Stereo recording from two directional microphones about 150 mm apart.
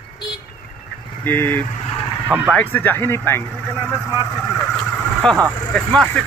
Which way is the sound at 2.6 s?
10° left (ahead or behind).